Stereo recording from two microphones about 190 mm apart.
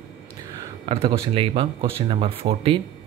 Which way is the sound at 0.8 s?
25° right (ahead or behind).